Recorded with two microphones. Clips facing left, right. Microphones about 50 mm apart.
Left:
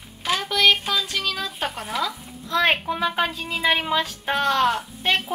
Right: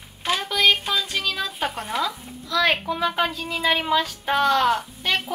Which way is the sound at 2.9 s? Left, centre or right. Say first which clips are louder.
Even; centre.